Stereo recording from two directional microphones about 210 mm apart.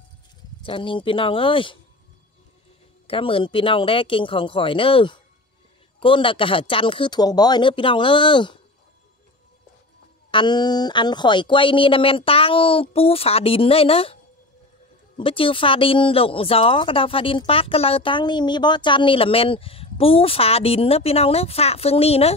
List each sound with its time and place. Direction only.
0.6 s speech: 25° left (ahead or behind)
3.1 s speech: 25° left (ahead or behind)
10.3 s speech: 20° left (ahead or behind)
15.1 s speech: 25° left (ahead or behind)